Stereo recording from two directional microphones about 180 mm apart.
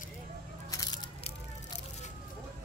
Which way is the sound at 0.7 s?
20° left (ahead or behind).